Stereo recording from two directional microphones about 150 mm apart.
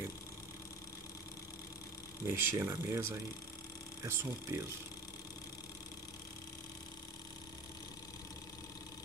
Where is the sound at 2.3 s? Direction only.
20° right (ahead or behind).